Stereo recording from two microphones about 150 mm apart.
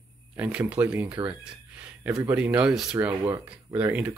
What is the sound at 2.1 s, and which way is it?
Speech, 20° right (ahead or behind).